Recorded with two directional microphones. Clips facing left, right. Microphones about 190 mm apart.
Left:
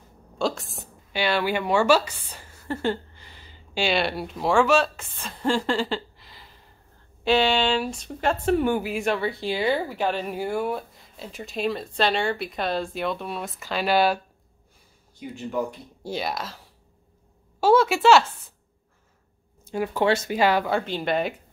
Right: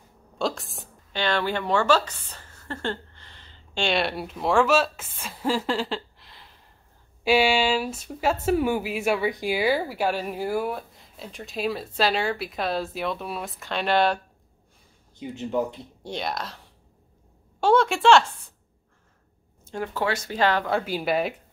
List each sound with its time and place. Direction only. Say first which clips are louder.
0.4 s a woman's voice: left 1 dB; centre (ahead or behind)
15.1 s speech: right 2 dB; 20° right (ahead or behind)
16.0 s speech: left 1 dB; 5° left (ahead or behind)
19.6 s speech: left 4 dB; 10° left (ahead or behind)
20.7 s speech: even; 5° right (ahead or behind)